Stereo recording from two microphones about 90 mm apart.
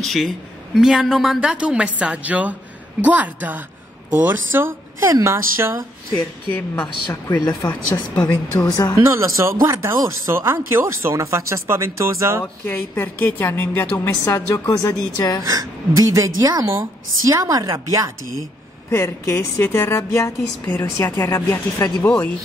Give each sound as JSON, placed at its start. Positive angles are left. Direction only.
{"t": 0.0, "sound": "a man's voice", "side_deg": 5}
{"t": 6.5, "sound": "speech", "side_deg": 20}
{"t": 7.3, "sound": "speech", "side_deg": 45}
{"t": 9.0, "sound": "speech", "side_deg": -30}
{"t": 12.6, "sound": "a woman's voice", "side_deg": 25}
{"t": 15.4, "sound": "a woman's voice", "side_deg": -45}
{"t": 16.6, "sound": "speech", "side_deg": -30}
{"t": 18.9, "sound": "a woman's voice", "side_deg": 30}